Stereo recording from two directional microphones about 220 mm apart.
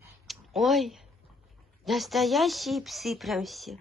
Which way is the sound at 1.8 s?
Centre (ahead or behind).